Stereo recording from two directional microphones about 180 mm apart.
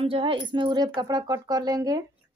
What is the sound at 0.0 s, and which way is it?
Speech, 30° right (ahead or behind).